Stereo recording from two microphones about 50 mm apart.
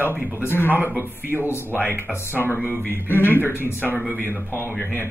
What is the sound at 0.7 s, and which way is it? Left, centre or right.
Speech, right.